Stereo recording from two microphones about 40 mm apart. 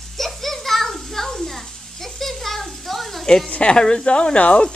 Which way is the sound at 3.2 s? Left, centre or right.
Centre.